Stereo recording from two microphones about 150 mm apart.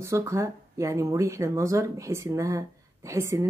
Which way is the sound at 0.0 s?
20° right (ahead or behind).